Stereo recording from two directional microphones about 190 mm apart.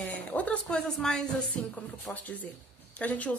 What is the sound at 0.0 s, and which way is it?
A woman's voice, 10° left (ahead or behind).